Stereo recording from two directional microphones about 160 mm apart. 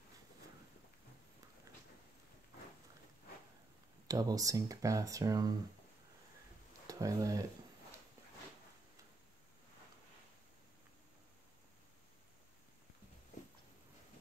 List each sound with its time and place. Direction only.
4.1 s speech: 20° right (ahead or behind)
6.9 s speech: 20° right (ahead or behind)